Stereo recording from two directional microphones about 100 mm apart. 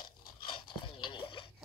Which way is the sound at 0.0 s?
55° left (ahead or behind).